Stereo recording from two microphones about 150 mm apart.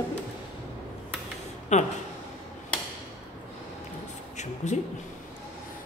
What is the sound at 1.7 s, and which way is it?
Speech, 50° left (ahead or behind).